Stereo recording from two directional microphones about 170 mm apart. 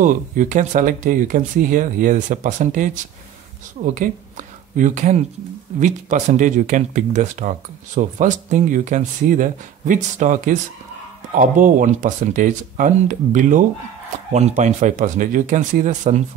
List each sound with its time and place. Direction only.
0.0 s speech: 50° right (ahead or behind)